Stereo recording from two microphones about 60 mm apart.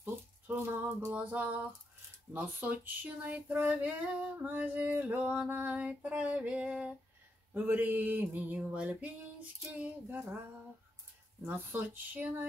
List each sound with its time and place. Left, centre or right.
0.0 s a sound: right
1.1 s female singing: right
2.3 s speech: right
3.2 s female singing: right
7.5 s speech: right
8.5 s female singing: right
11.4 s speech: right